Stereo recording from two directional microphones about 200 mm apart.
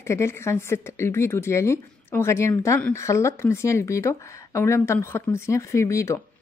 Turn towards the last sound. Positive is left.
turn(degrees=15)  # may be behind; listen again after turning